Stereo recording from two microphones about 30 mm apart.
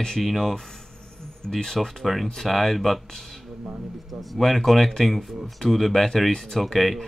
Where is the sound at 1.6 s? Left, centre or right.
Centre.